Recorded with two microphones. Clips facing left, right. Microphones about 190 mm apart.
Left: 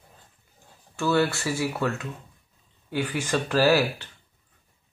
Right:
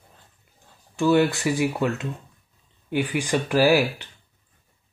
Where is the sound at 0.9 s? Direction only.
15° right (ahead or behind).